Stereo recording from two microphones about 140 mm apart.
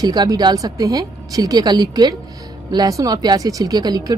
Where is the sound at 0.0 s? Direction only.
30° right (ahead or behind).